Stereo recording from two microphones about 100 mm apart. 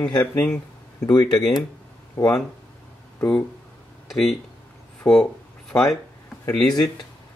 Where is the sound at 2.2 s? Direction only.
30° left (ahead or behind).